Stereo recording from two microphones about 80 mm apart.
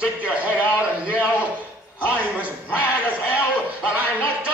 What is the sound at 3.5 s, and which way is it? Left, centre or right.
Speech, centre.